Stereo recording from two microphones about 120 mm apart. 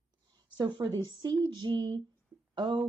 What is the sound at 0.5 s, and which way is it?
Speech, 40° right (ahead or behind).